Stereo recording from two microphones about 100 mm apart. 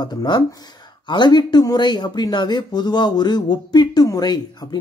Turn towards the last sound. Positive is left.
turn(degrees=45)  # may be behind; listen again after turning